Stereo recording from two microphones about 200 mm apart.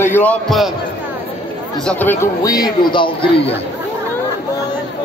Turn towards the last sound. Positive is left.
turn(degrees=25)  # may be behind; listen again after turning